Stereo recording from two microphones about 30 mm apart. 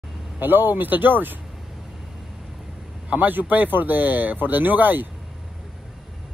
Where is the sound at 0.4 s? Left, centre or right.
Right.